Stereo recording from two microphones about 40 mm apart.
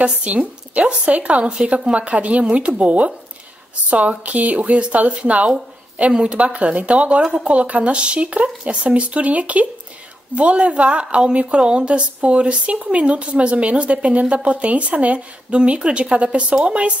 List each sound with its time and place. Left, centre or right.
0.0 s speech: right